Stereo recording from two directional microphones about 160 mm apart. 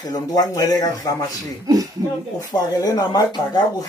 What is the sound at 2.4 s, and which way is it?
Speech, 25° left (ahead or behind).